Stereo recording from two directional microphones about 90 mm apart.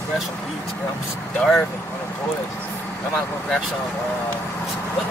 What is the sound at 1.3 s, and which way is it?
Speech, 5° left (ahead or behind).